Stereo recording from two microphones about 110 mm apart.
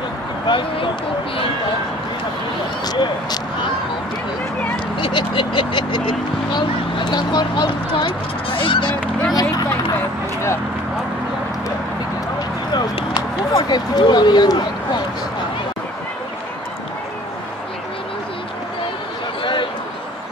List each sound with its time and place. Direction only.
0.5 s speech: 50° left (ahead or behind)
2.9 s speech: 40° left (ahead or behind)
4.9 s speech: 50° left (ahead or behind)
9.3 s speech: 35° left (ahead or behind)
13.5 s speech: 35° left (ahead or behind)